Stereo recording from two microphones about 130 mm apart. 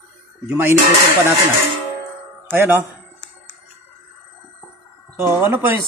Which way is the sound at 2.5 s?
15° right (ahead or behind).